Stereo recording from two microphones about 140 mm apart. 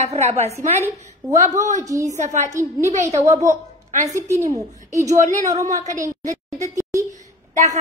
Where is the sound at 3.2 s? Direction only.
20° right (ahead or behind).